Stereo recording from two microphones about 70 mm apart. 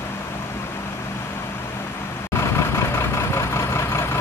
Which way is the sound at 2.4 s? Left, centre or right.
Left.